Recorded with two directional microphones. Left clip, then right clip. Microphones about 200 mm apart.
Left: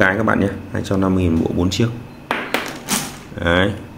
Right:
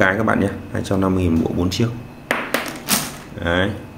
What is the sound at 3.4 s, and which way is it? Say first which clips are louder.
Speech: left 3 dB; 15° left (ahead or behind).